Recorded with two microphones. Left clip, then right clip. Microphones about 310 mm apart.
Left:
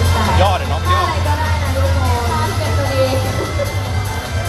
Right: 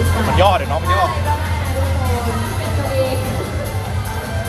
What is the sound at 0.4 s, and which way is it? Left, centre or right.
Music, right.